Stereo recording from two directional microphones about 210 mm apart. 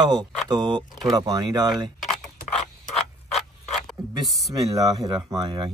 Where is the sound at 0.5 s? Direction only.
20° right (ahead or behind).